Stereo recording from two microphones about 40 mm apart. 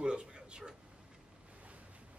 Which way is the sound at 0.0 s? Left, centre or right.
Right.